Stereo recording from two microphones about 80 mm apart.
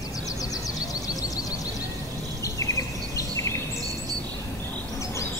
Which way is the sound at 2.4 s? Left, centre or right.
Left.